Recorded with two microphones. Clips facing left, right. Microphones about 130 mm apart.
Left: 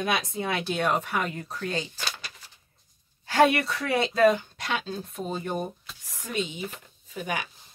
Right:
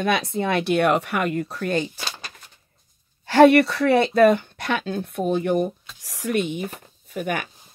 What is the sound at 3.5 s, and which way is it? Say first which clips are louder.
Speech: right 9 dB; 70° right (ahead or behind).